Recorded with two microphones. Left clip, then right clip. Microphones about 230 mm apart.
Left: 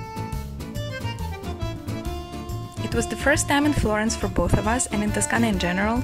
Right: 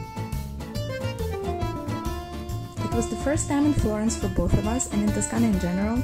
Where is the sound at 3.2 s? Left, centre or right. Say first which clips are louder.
Left 6 dB; left.